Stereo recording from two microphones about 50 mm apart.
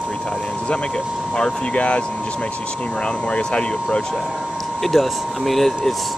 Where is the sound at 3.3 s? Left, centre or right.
Left.